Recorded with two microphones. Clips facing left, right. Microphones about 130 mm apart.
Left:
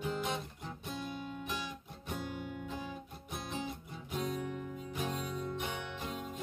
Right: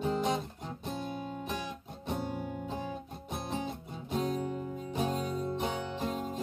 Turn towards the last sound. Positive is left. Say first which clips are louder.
# right 7 dB
turn(degrees=-35)  # may be behind; listen again after turning